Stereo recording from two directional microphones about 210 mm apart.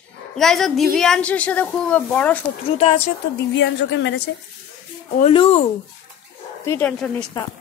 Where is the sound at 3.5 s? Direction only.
60° left (ahead or behind).